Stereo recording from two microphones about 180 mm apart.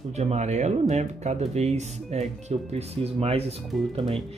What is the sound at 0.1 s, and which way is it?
Speech, 40° right (ahead or behind).